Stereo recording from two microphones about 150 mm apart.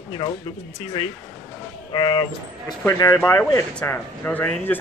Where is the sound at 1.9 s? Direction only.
30° left (ahead or behind).